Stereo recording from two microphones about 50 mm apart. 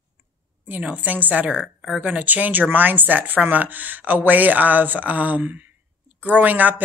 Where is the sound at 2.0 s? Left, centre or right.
Right.